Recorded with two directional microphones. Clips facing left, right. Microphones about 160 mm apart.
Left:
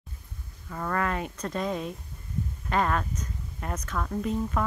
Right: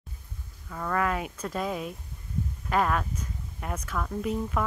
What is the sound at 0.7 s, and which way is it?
Speech, centre (ahead or behind).